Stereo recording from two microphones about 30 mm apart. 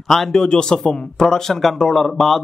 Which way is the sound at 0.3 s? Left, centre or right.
Left.